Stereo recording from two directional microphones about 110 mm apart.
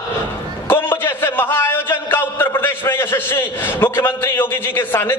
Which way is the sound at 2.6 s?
20° left (ahead or behind).